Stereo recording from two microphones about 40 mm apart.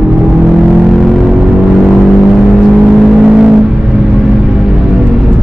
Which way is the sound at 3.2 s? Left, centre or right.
Right.